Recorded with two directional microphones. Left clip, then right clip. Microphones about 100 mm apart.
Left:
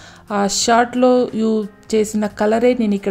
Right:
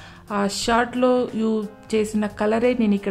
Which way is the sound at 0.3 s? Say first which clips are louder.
Left 6 dB; 30° left (ahead or behind).